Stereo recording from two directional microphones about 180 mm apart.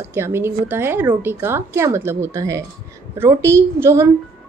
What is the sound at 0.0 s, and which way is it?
Speech, 15° right (ahead or behind).